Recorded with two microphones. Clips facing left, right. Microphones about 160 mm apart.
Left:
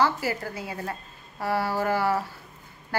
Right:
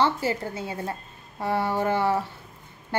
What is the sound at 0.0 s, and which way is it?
A woman's voice, 25° right (ahead or behind).